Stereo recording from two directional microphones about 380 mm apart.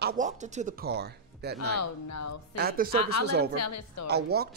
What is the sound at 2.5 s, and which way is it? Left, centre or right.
A man's voice, right.